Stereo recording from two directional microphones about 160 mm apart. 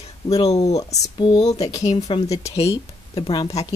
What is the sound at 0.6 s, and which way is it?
Speech, 45° left (ahead or behind).